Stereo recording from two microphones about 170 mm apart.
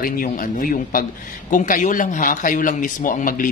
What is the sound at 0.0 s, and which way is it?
Speech, 55° left (ahead or behind).